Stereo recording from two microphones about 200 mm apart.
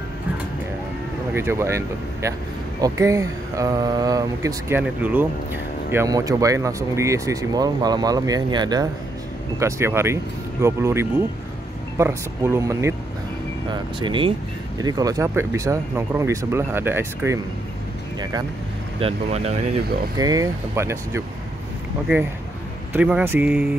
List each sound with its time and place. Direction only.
1.3 s speech: 10° right (ahead or behind)
18.9 s speech: 30° right (ahead or behind)
20.2 s speech: 20° right (ahead or behind)
22.9 s speech: 5° right (ahead or behind)